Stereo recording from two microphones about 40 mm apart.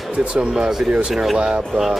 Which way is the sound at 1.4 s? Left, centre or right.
Right.